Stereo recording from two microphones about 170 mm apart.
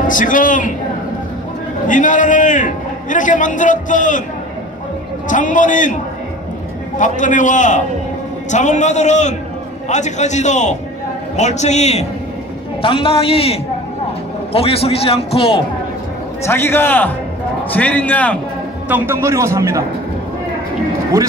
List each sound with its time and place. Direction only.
0.1 s a man's voice: 50° left (ahead or behind)
1.9 s a man's voice: 50° left (ahead or behind)
5.3 s a man's voice: 50° left (ahead or behind)
7.0 s a man's voice: 50° left (ahead or behind)
16.4 s a man's voice: 15° left (ahead or behind)
18.9 s a man's voice: 10° right (ahead or behind)